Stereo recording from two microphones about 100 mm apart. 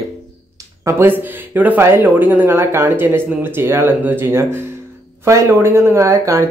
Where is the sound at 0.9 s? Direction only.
25° right (ahead or behind).